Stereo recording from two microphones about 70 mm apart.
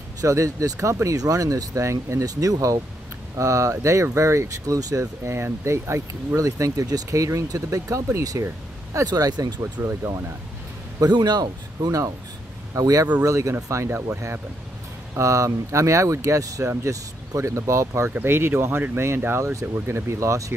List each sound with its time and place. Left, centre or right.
0.2 s speech: right
1.9 s speech: right
2.2 s speech: right
9.6 s speech: right
11.0 s speech: right
12.7 s speech: right